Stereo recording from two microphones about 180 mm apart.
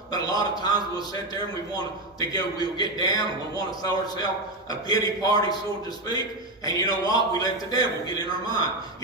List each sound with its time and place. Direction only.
0.1 s a man's voice: 20° left (ahead or behind)